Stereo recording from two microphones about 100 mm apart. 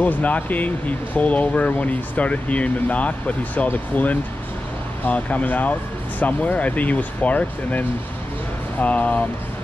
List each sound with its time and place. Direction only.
0.0 s speech: 15° left (ahead or behind)